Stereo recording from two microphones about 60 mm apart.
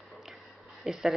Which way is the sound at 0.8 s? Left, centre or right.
Centre.